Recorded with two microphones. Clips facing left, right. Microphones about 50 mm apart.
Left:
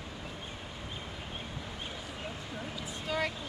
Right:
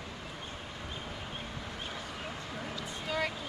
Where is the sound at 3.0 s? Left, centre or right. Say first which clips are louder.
Left 1 dB; centre.